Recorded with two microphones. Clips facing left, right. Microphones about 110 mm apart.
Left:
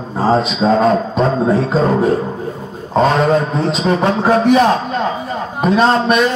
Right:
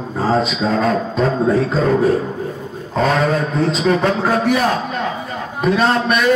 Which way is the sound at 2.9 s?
30° left (ahead or behind).